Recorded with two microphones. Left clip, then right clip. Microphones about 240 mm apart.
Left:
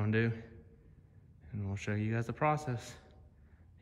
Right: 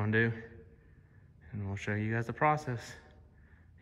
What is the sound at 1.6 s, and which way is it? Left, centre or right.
Speech, centre.